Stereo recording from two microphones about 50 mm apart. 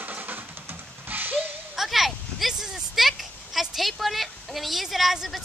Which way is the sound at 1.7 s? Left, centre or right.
Centre.